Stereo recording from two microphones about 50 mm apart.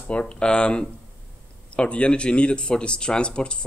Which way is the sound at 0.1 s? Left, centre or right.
Left.